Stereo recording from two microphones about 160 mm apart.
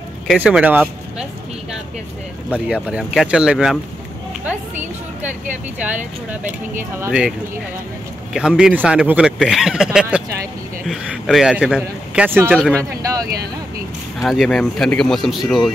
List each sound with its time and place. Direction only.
0.3 s speech: 5° right (ahead or behind)
2.5 s speech: 5° right (ahead or behind)
5.9 s speech: 55° right (ahead or behind)
6.8 s speech: 10° right (ahead or behind)
10.1 s vehicle: 5° right (ahead or behind)
10.9 s a man's voice: centre (ahead or behind)
12.5 s speech: 5° left (ahead or behind)
14.2 s speech: centre (ahead or behind)